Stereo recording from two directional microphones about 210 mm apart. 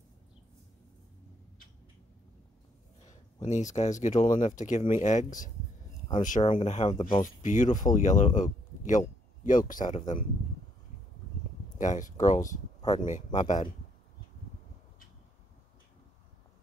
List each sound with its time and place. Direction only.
3.4 s speech: 35° left (ahead or behind)
6.2 s speech: 35° left (ahead or behind)
11.8 s speech: 35° left (ahead or behind)